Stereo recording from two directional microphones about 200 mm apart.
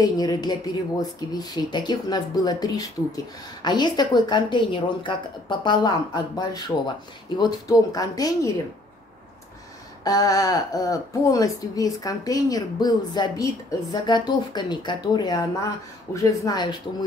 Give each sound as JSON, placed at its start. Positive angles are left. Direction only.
{"t": 0.0, "sound": "speech", "side_deg": 20}
{"t": 10.0, "sound": "speech", "side_deg": 20}